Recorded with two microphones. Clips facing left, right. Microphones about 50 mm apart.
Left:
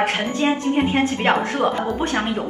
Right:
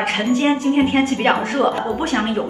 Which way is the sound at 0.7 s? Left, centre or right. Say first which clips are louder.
Right 3 dB; centre.